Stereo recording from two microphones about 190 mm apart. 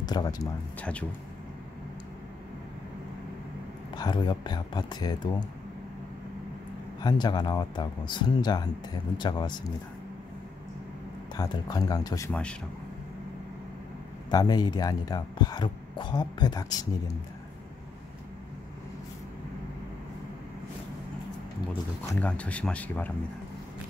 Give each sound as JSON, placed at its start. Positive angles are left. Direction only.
{"t": 0.0, "sound": "speech", "side_deg": 20}
{"t": 0.7, "sound": "speech", "side_deg": 5}
{"t": 3.9, "sound": "speech", "side_deg": 20}
{"t": 7.0, "sound": "speech", "side_deg": 20}
{"t": 11.3, "sound": "speech", "side_deg": 20}
{"t": 12.3, "sound": "speech", "side_deg": 5}
{"t": 14.3, "sound": "speech", "side_deg": 20}
{"t": 22.2, "sound": "speech", "side_deg": 5}